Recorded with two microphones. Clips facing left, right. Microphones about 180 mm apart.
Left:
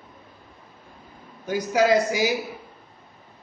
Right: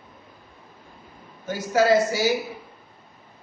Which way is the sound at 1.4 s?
15° left (ahead or behind).